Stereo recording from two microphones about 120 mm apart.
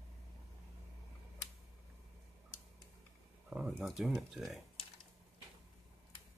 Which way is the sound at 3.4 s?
5° right (ahead or behind).